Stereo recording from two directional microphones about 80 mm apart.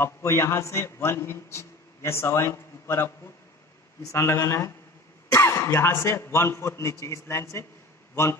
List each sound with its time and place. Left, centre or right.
0.0 s a man's voice: left